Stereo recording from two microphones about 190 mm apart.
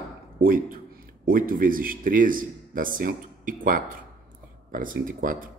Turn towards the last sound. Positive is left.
turn(degrees=-45)  # may be behind; listen again after turning